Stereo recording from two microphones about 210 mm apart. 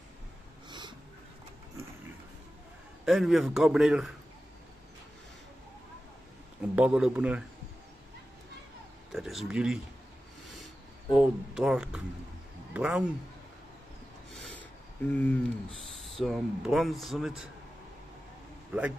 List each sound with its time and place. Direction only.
0.7 s a sound: 20° right (ahead or behind)
3.1 s speech: centre (ahead or behind)
6.7 s speech: 5° right (ahead or behind)
9.1 s speech: centre (ahead or behind)
10.6 s a sound: centre (ahead or behind)
12.7 s speech: 5° right (ahead or behind)
14.3 s a sound: 5° left (ahead or behind)
16.0 s speech: centre (ahead or behind)
18.7 s a man's voice: 10° right (ahead or behind)